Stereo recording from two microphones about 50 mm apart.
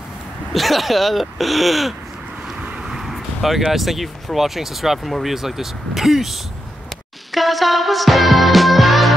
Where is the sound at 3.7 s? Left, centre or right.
Centre.